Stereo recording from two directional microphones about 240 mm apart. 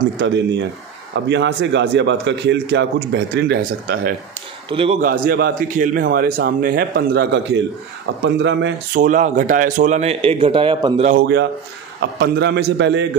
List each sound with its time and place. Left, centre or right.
1.1 s a man's voice: right
4.6 s a man's voice: right
5.0 s a man's voice: right
9.0 s a man's voice: right
11.1 s a man's voice: right